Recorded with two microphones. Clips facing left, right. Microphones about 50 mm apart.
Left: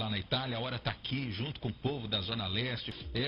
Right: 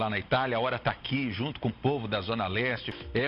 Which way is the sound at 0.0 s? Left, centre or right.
Right.